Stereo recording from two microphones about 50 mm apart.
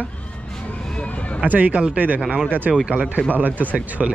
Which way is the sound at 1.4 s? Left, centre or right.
Right.